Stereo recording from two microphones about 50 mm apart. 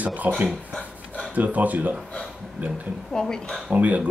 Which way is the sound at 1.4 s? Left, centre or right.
Right.